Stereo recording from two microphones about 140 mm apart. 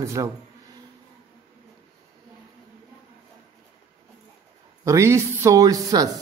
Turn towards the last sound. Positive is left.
turn(degrees=-25)  # may be behind; listen again after turning